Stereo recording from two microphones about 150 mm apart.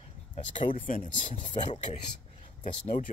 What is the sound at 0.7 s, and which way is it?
Speech, 65° left (ahead or behind).